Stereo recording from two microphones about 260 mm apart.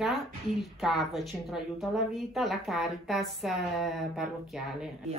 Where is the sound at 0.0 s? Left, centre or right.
Centre.